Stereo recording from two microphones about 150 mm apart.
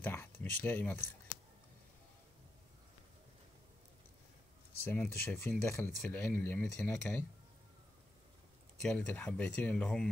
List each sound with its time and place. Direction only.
0.0 s a sound: 10° left (ahead or behind)
4.7 s speech: 15° left (ahead or behind)
8.8 s speech: 10° left (ahead or behind)